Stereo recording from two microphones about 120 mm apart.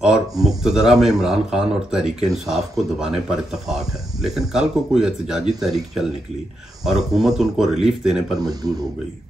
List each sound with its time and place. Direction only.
0.0 s speech: 5° right (ahead or behind)
8.4 s speech: 35° right (ahead or behind)